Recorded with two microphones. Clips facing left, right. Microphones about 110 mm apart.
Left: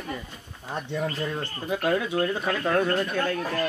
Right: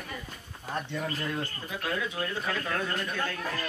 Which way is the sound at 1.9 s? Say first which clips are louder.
Left 8 dB; 45° left (ahead or behind).